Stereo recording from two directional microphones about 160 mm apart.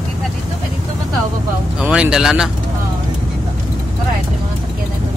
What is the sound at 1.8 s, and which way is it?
Speech, 5° right (ahead or behind).